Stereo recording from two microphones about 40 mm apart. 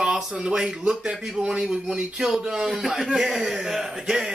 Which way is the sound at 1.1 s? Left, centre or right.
Centre.